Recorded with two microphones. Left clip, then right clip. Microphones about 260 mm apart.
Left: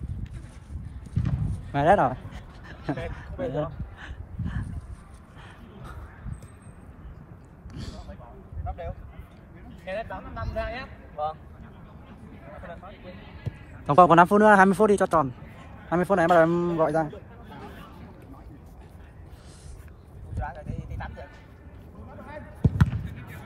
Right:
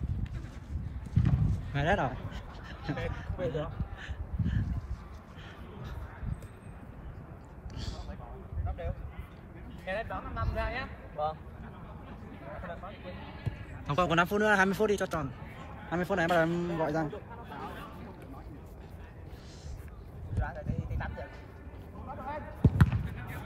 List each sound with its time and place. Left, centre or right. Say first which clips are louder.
1.2 s a sound: even; centre
7.7 s a sound: left 2 dB; centre
9.8 s speech: left 2 dB; centre
13.8 s a man's voice: left 12 dB; centre
20.4 s clip-clop: left 3 dB; left
22.2 s basketball bounce: left 1 dB; centre